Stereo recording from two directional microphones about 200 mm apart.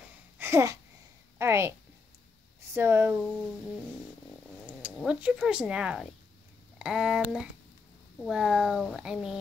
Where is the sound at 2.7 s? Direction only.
10° right (ahead or behind).